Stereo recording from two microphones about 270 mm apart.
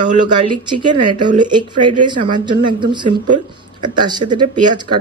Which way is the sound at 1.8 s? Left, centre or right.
Right.